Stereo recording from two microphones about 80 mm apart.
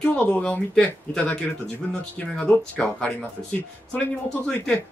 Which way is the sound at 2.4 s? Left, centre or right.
Centre.